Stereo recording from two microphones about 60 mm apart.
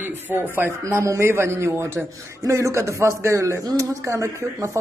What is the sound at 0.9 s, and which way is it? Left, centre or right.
A man's voice, right.